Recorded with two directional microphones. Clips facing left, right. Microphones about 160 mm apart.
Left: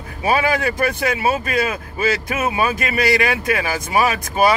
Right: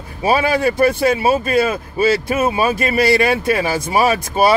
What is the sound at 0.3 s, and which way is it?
Speech, 30° right (ahead or behind).